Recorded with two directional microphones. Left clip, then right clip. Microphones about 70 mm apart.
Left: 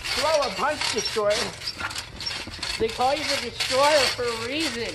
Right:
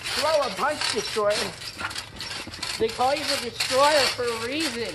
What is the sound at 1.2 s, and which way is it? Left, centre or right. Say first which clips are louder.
Speech: even; right.